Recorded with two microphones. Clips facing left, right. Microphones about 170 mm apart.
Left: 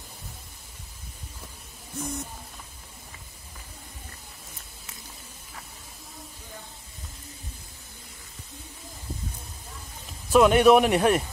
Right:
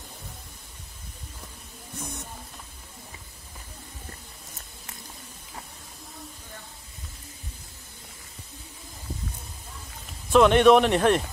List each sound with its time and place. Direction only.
10.3 s a man's voice: 5° left (ahead or behind)